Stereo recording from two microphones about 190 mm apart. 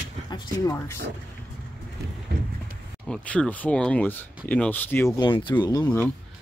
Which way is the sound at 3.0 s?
5° left (ahead or behind).